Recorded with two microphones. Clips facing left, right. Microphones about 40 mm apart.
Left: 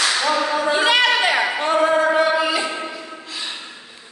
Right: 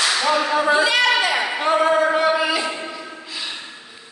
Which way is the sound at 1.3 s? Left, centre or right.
Centre.